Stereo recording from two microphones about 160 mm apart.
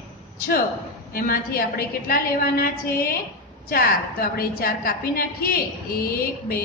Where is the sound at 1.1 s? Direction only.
65° left (ahead or behind).